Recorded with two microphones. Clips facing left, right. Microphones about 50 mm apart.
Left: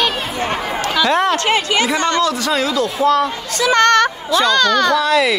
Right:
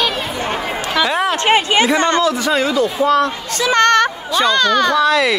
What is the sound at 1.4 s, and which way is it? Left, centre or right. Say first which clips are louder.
Speech: right 3 dB; right.